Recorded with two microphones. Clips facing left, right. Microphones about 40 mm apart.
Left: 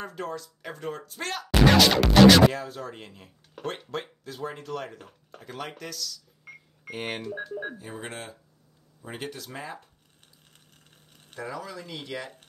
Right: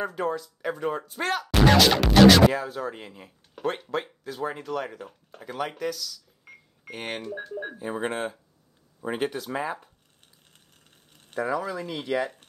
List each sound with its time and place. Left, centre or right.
0.0 s speech: centre
7.8 s speech: right
11.3 s speech: right